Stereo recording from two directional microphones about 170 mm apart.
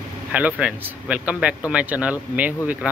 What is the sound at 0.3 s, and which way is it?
Speech, 10° right (ahead or behind).